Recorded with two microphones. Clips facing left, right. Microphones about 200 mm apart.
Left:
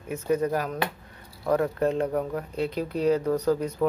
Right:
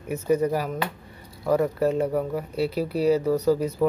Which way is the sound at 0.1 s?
10° right (ahead or behind).